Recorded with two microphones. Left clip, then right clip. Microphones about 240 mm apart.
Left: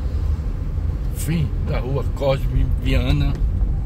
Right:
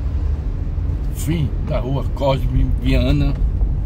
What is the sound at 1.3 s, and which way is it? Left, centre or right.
Speech, centre.